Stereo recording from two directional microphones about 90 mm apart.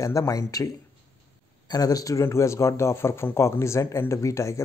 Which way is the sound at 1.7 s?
45° left (ahead or behind).